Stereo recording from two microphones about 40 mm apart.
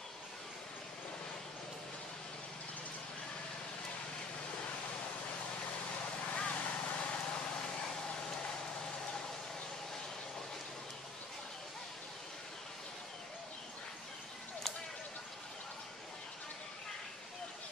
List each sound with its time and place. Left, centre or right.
6.3 s vehicle: left; by 8.5 s centre